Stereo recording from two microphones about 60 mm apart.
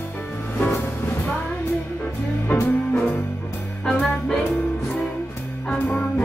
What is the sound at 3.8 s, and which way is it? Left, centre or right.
Music, centre.